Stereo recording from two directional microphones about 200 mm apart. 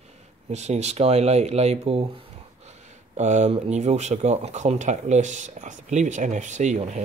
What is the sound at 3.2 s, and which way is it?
Speech, 35° right (ahead or behind).